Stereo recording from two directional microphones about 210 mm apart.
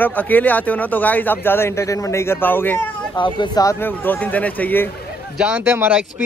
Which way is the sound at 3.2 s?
20° left (ahead or behind).